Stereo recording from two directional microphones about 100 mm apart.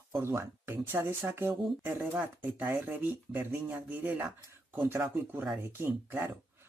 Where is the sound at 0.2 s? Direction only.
25° right (ahead or behind).